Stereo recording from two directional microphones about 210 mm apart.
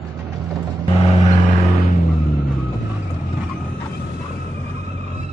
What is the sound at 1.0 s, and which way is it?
Vehicle, 25° left (ahead or behind).